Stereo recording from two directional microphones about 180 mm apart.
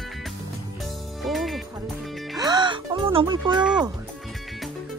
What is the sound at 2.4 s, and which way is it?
Speech, 25° right (ahead or behind).